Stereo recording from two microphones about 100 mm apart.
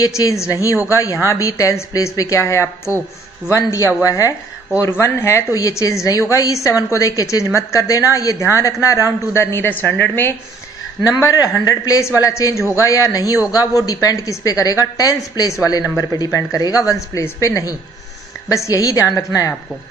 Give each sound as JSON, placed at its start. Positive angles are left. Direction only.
{"t": 0.0, "sound": "a woman's voice", "side_deg": 35}
{"t": 11.1, "sound": "speech", "side_deg": 35}